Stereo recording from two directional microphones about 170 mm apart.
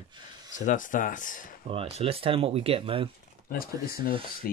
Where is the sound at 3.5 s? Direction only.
60° left (ahead or behind).